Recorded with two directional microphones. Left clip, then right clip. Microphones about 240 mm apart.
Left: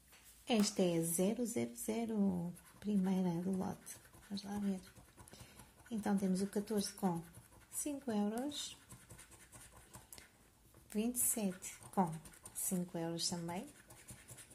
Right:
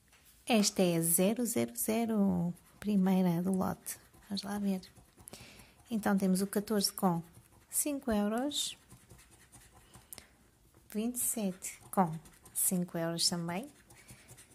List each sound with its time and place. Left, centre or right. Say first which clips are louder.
0.5 s speech: right 6 dB; right
5.9 s speech: right 7 dB; right
10.9 s speech: right 2 dB; centre